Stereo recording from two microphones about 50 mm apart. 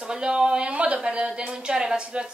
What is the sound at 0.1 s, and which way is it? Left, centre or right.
A woman's voice, centre.